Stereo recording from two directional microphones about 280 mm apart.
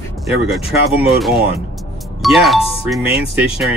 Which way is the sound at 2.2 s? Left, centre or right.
Centre.